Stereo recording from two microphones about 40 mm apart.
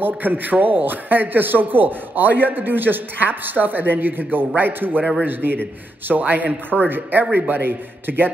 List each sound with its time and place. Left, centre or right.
0.0 s a man's voice: right